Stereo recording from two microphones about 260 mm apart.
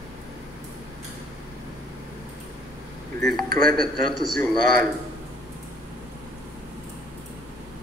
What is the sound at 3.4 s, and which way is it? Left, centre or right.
Speech, right.